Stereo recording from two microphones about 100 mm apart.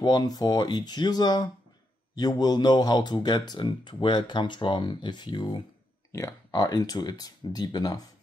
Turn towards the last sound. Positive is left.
turn(degrees=45)  # may be behind; listen again after turning